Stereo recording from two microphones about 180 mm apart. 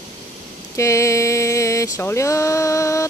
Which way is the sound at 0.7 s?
15° left (ahead or behind).